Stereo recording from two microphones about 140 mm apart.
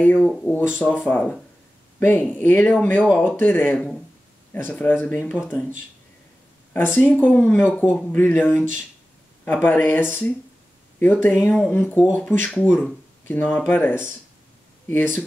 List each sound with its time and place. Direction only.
0.0 s speech: 10° left (ahead or behind)
6.7 s speech: 10° left (ahead or behind)
12.4 s speech: centre (ahead or behind)
13.3 s speech: 10° left (ahead or behind)